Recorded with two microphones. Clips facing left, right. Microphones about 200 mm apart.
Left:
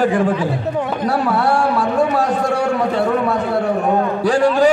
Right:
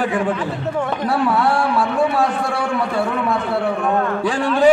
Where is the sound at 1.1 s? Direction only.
40° left (ahead or behind).